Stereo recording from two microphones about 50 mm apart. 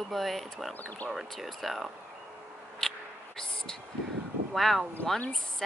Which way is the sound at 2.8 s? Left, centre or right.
Centre.